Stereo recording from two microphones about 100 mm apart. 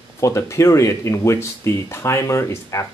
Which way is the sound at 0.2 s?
30° left (ahead or behind).